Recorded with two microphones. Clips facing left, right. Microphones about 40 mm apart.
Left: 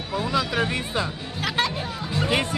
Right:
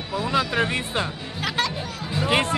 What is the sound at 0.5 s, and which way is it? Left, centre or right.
Speech, right.